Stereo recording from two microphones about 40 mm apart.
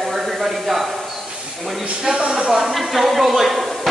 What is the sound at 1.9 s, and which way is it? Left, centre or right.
Speech, right.